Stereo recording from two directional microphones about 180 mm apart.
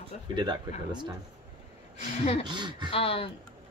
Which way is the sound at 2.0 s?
35° left (ahead or behind).